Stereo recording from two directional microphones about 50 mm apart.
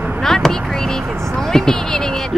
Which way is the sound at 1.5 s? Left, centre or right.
Centre.